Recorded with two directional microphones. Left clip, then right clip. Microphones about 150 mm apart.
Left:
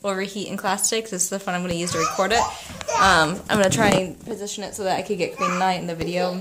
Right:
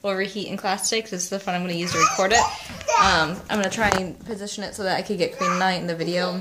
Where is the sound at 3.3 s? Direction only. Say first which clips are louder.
Left 5 dB; 65° left (ahead or behind).